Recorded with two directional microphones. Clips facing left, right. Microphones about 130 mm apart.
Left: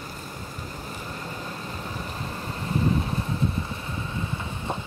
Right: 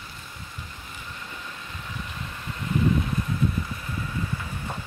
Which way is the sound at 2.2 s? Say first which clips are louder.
Even; 35° left (ahead or behind).